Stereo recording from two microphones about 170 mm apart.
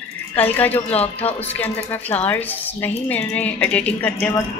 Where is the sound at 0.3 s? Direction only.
10° left (ahead or behind).